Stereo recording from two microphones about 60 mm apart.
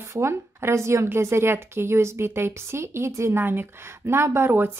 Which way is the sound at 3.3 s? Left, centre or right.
Right.